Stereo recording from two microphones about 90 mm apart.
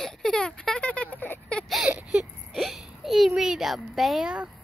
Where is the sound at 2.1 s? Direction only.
5° right (ahead or behind).